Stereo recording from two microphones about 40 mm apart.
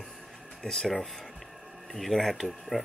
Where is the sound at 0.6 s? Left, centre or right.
Centre.